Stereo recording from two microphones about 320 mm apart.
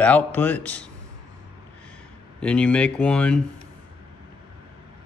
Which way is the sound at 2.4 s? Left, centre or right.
Centre.